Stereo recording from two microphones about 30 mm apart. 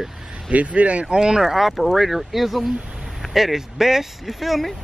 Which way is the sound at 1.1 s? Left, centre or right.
Right.